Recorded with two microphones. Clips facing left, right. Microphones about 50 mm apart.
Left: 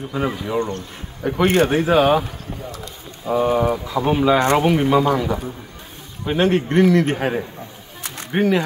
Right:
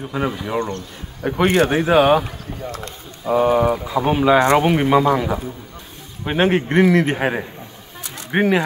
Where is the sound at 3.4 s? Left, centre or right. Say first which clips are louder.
Right 2 dB; centre.